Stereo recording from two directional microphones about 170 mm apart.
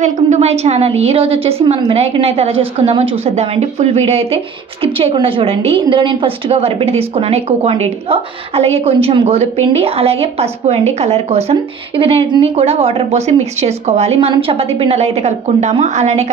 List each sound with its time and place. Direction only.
0.0 s a woman's voice: 40° right (ahead or behind)